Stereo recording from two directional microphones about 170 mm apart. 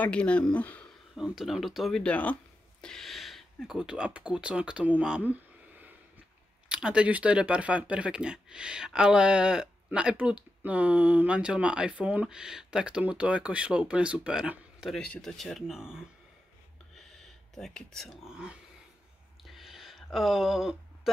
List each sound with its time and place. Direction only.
0.0 s speech: 5° left (ahead or behind)
1.2 s speech: centre (ahead or behind)
19.5 s a sound: centre (ahead or behind)